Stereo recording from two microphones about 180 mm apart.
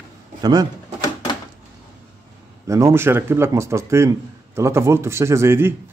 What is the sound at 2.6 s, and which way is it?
Speech, 15° right (ahead or behind).